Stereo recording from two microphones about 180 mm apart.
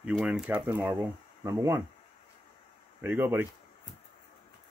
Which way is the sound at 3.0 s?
10° right (ahead or behind).